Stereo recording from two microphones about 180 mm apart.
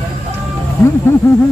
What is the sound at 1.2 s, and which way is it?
Speech, 15° left (ahead or behind).